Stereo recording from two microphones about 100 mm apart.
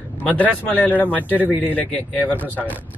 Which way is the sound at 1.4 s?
20° right (ahead or behind).